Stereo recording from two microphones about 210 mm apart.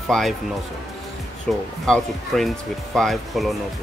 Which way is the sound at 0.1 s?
Centre (ahead or behind).